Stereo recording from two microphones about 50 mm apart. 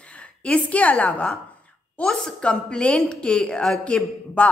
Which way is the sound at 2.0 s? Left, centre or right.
Centre.